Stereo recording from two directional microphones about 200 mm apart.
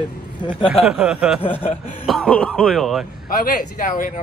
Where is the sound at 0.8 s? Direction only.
5° right (ahead or behind).